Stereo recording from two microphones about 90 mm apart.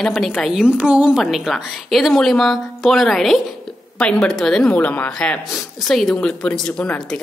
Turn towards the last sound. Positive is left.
turn(degrees=10)  # may be behind; listen again after turning